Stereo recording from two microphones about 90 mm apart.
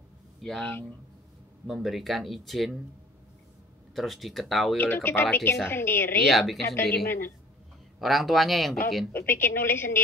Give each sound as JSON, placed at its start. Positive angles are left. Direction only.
{"t": 0.4, "sound": "speech", "side_deg": 10}
{"t": 1.7, "sound": "speech", "side_deg": -5}
{"t": 3.9, "sound": "speech", "side_deg": 0}
{"t": 4.7, "sound": "a woman's voice", "side_deg": 25}
{"t": 6.2, "sound": "speech", "side_deg": 0}
{"t": 6.8, "sound": "a woman's voice", "side_deg": 25}
{"t": 8.0, "sound": "speech", "side_deg": 0}
{"t": 9.1, "sound": "a woman's voice", "side_deg": 25}